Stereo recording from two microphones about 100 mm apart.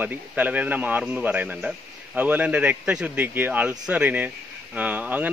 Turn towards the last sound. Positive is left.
turn(degrees=-15)  # may be behind; listen again after turning